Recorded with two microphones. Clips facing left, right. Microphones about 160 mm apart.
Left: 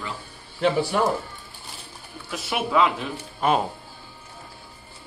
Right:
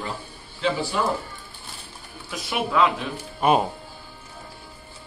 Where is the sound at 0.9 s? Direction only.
55° left (ahead or behind).